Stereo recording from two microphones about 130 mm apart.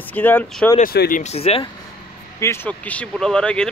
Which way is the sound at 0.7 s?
75° left (ahead or behind).